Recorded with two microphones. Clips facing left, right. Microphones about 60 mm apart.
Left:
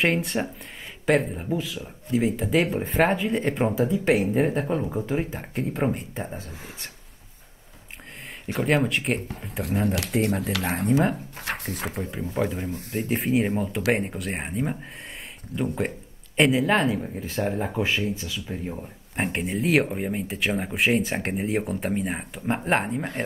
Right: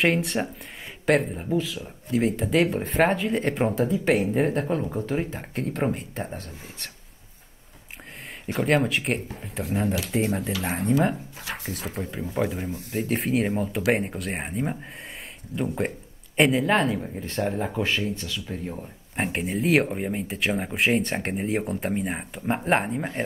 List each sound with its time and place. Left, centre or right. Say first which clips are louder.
0.0 s speech: right 1 dB; centre
8.5 s speech: even; centre
11.4 s speech: left 3 dB; left
11.9 s speech: even; centre